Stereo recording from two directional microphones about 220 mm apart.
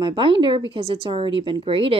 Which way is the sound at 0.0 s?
20° right (ahead or behind).